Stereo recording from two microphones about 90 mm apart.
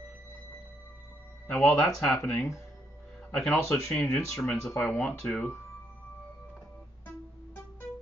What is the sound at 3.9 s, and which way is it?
Speech, 10° left (ahead or behind).